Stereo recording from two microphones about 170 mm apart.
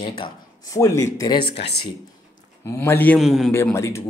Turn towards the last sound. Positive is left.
turn(degrees=15)  # may be behind; listen again after turning